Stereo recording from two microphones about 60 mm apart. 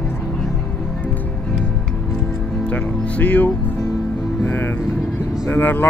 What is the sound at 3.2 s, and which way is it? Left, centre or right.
Speech, left.